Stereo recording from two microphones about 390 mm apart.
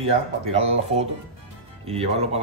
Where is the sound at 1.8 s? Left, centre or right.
Centre.